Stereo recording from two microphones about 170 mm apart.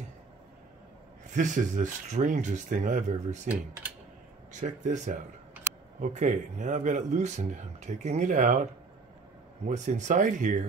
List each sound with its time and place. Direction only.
1.3 s a man's voice: 45° right (ahead or behind)
4.5 s a man's voice: 45° right (ahead or behind)
9.7 s a man's voice: 45° right (ahead or behind)